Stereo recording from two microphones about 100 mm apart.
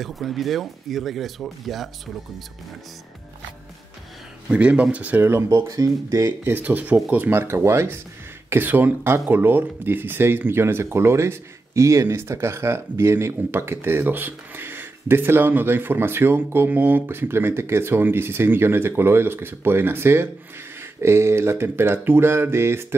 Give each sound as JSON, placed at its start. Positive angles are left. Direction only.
{"t": 0.0, "sound": "speech", "side_deg": 0}
{"t": 4.5, "sound": "speech", "side_deg": -10}
{"t": 5.5, "sound": "speech", "side_deg": -35}
{"t": 6.6, "sound": "speech", "side_deg": -15}